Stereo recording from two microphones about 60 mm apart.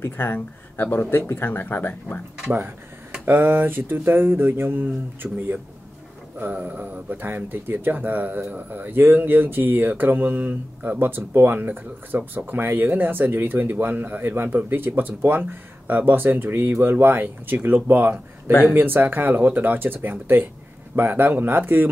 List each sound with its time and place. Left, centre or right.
0.0 s speech: left
3.3 s speech: right